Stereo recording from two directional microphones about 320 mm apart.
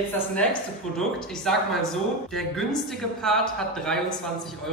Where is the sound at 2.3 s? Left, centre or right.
Centre.